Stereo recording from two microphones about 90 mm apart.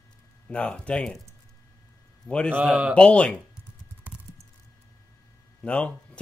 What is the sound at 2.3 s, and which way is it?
Speech, 10° left (ahead or behind).